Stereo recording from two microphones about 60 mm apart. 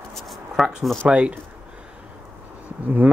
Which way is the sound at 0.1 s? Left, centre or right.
Centre.